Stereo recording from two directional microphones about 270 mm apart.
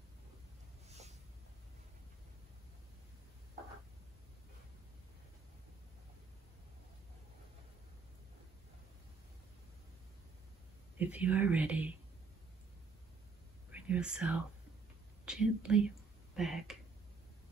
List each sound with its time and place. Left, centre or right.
0.8 s a sound: right
11.0 s speech: centre
13.7 s speech: centre